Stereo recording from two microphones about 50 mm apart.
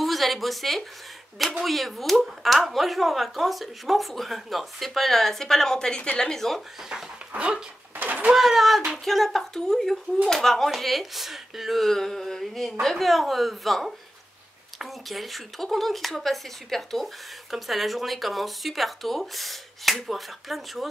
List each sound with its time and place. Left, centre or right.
0.0 s speech: centre
8.0 s speech: right
8.4 s speech: centre